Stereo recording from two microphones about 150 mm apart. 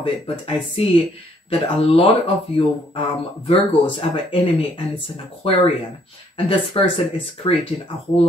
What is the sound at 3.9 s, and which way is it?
Speech, 40° left (ahead or behind).